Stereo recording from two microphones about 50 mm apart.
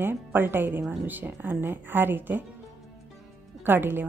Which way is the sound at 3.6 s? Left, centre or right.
Right.